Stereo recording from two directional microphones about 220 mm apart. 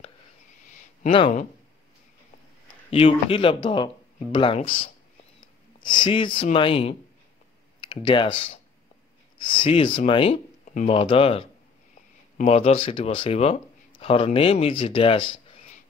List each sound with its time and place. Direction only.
1.0 s speech: 25° left (ahead or behind)
2.9 s speech: 25° left (ahead or behind)